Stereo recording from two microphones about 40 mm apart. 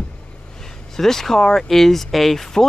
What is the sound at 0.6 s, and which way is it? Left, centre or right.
Speech, centre.